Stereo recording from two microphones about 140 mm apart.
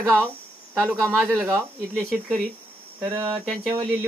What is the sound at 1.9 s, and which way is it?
Speech, centre (ahead or behind).